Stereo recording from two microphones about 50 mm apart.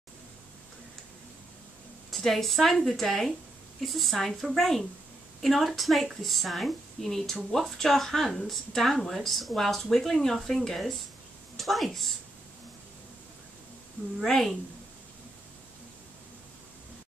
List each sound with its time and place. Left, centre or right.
2.0 s a woman's voice: centre
14.2 s a woman's voice: centre